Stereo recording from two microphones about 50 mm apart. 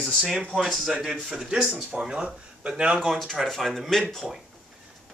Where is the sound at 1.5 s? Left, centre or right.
Centre.